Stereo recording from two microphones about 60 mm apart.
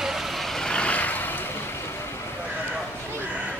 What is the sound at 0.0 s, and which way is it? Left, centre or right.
Vehicle, centre.